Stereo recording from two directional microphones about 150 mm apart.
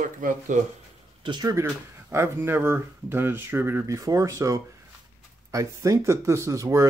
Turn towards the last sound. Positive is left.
turn(degrees=-20)  # may be behind; listen again after turning